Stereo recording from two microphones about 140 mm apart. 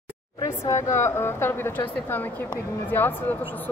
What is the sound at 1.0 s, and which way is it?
Speech, 15° left (ahead or behind).